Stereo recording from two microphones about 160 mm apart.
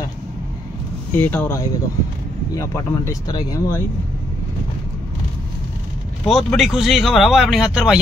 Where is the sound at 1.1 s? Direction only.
10° left (ahead or behind).